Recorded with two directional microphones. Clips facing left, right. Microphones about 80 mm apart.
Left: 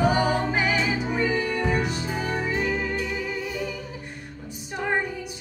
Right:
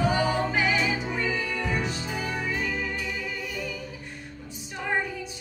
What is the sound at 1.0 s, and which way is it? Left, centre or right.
Music, left.